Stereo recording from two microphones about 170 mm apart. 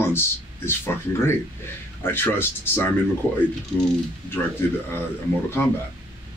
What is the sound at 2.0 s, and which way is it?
Speech, 15° left (ahead or behind).